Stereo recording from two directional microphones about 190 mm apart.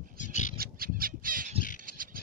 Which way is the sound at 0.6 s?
50° right (ahead or behind).